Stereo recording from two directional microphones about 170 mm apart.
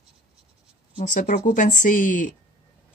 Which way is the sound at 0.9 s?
50° left (ahead or behind).